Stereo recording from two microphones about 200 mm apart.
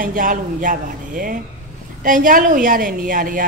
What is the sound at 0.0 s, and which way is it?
A woman's voice, 45° right (ahead or behind).